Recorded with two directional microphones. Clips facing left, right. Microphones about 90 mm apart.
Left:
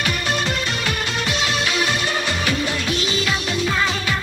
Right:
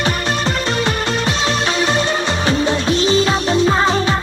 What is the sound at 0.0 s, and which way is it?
Music, 35° right (ahead or behind).